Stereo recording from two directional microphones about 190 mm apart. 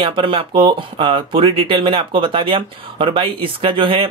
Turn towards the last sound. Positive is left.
turn(degrees=-25)  # may be behind; listen again after turning